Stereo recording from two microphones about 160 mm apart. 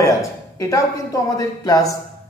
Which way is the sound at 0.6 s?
20° left (ahead or behind).